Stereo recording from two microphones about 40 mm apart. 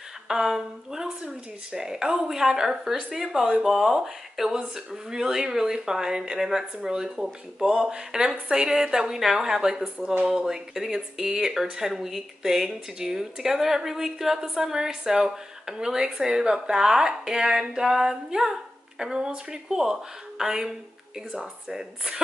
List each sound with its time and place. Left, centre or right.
0.3 s speech: centre